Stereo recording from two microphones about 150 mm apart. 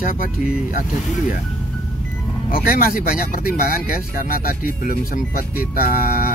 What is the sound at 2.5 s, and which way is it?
Speech, 75° left (ahead or behind).